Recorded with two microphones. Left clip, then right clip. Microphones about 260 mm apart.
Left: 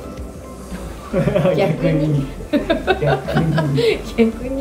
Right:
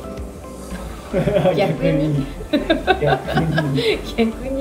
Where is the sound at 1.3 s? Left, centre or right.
Centre.